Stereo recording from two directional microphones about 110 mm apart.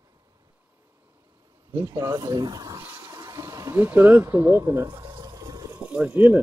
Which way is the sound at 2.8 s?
25° right (ahead or behind).